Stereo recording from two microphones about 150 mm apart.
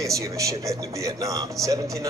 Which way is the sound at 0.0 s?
20° right (ahead or behind).